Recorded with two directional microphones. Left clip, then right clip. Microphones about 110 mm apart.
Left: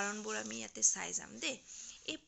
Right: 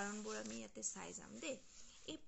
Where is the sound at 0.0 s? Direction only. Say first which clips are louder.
Left 7 dB; 25° left (ahead or behind).